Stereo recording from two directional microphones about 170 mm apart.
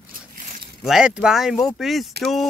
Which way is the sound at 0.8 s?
5° right (ahead or behind).